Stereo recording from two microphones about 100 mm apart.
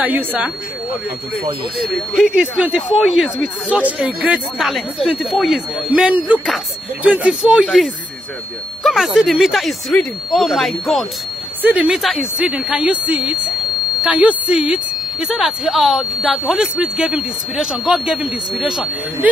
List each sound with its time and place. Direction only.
0.0 s speech: 15° right (ahead or behind)
1.9 s speech: centre (ahead or behind)
11.6 s speech: 15° right (ahead or behind)
11.9 s speech: centre (ahead or behind)
19.2 s speech: 15° right (ahead or behind)